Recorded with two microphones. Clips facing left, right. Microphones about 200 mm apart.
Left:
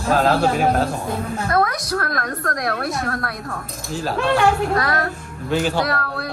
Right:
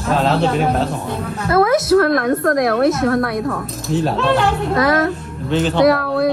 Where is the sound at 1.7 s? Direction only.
25° right (ahead or behind).